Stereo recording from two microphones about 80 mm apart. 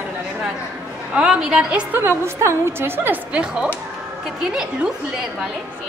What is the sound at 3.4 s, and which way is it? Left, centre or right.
A woman's voice, centre.